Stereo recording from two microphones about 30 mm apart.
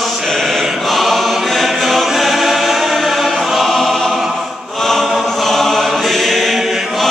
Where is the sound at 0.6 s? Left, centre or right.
Centre.